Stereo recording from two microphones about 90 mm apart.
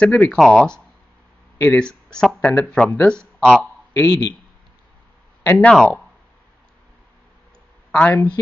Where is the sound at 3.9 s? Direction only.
35° left (ahead or behind).